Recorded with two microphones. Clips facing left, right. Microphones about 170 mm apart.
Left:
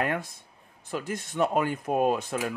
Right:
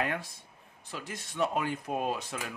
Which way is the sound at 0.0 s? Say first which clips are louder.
Left 4 dB; 50° left (ahead or behind).